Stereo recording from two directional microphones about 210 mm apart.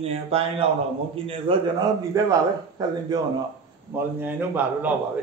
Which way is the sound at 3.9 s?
10° right (ahead or behind).